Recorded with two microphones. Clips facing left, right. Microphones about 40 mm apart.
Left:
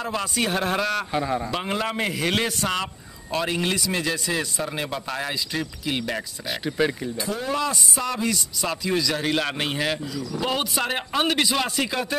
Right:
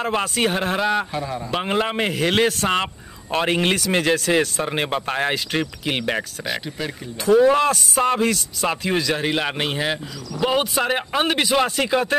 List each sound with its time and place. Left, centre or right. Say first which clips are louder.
0.0 s a man's voice: right 5 dB; right
0.5 s speech: right 1 dB; right
1.1 s speech: left 2 dB; centre
1.5 s a man's voice: right 4 dB; right
6.8 s speech: left 6 dB; centre
7.2 s a man's voice: right 12 dB; right
9.2 s speech: right 2 dB; centre
10.8 s speech: right 3 dB; centre
11.6 s a man's voice: right 4 dB; right